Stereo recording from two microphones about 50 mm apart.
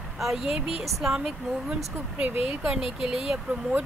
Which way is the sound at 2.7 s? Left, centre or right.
Centre.